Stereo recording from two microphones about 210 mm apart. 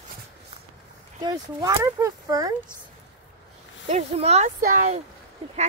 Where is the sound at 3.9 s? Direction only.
30° right (ahead or behind).